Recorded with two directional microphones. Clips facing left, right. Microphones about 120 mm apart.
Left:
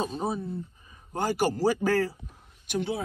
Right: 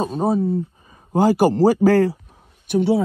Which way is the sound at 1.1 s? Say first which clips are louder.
Right 11 dB; 90° right.